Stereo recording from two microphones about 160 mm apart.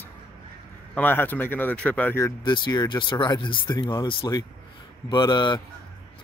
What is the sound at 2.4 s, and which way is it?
Speech, 30° left (ahead or behind).